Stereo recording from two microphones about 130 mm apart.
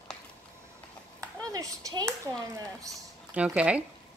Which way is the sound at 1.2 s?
25° right (ahead or behind).